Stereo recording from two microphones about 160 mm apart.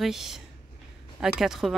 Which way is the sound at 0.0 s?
Centre (ahead or behind).